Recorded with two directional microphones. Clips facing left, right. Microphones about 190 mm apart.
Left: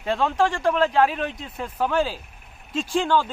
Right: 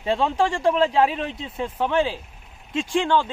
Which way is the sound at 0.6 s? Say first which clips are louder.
Right 2 dB; centre (ahead or behind).